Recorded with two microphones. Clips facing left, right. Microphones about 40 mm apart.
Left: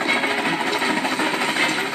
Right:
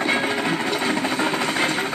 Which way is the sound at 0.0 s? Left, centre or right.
Centre.